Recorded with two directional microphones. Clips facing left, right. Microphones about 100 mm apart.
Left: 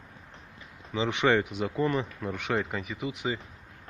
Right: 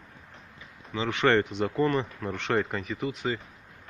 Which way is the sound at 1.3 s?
5° left (ahead or behind).